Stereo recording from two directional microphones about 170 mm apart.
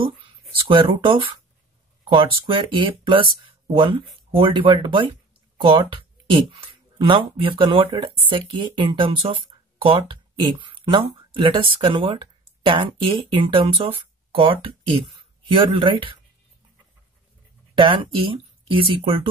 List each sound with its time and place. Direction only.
0.7 s speech: 30° right (ahead or behind)
10.4 s speech: 30° right (ahead or behind)
17.7 s speech: 30° right (ahead or behind)